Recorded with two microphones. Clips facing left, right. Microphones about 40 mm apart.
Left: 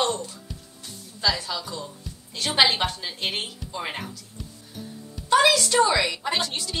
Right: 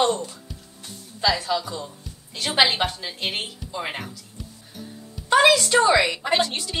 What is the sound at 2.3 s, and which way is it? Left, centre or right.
Speech, centre.